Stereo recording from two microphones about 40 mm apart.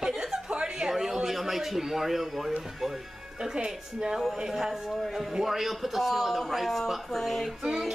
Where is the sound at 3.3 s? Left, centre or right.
Right.